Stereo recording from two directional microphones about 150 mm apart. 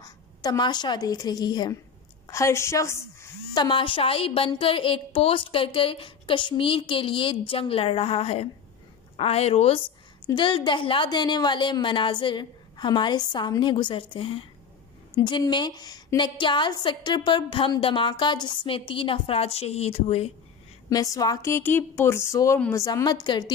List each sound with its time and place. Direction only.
0.0 s a woman's voice: 25° left (ahead or behind)
3.5 s a woman's voice: 30° left (ahead or behind)
10.2 s a woman's voice: 30° left (ahead or behind)
20.9 s a woman's voice: 25° left (ahead or behind)